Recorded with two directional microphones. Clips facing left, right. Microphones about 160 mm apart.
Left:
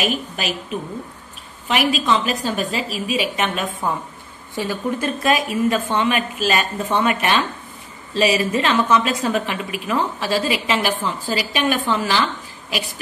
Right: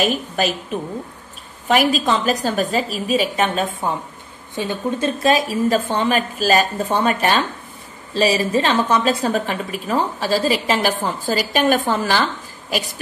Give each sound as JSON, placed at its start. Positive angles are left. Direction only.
{"t": 1.7, "sound": "a woman's voice", "side_deg": -40}
{"t": 4.6, "sound": "a woman's voice", "side_deg": -25}